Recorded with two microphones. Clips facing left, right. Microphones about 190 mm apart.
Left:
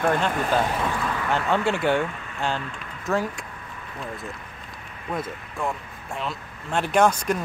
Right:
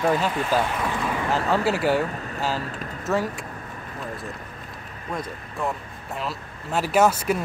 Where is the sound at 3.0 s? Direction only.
5° right (ahead or behind).